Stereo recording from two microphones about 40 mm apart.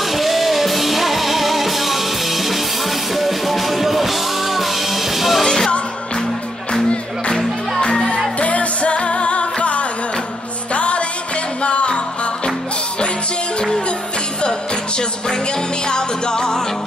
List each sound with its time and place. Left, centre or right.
0.0 s music: centre
5.4 s music: centre
7.8 s music: centre
8.4 s music: left
13.6 s music: left